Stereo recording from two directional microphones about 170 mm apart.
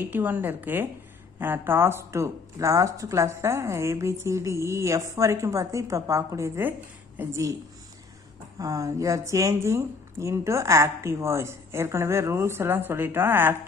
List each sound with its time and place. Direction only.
0.0 s speech: 10° right (ahead or behind)
8.5 s speech: 20° right (ahead or behind)